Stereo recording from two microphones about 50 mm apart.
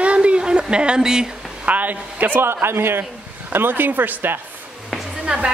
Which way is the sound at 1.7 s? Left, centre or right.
Right.